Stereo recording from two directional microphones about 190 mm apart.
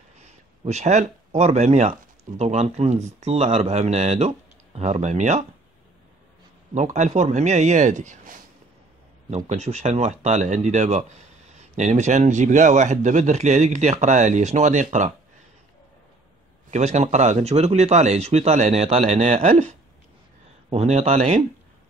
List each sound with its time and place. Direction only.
0.2 s speech: 35° right (ahead or behind)
6.7 s speech: 40° right (ahead or behind)
9.5 s speech: 35° right (ahead or behind)
16.7 s speech: 35° right (ahead or behind)